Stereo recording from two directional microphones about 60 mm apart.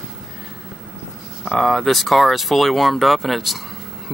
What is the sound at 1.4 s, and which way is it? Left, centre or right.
Speech, centre.